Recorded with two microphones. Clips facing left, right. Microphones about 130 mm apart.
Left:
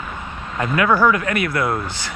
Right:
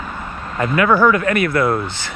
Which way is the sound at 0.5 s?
Centre (ahead or behind).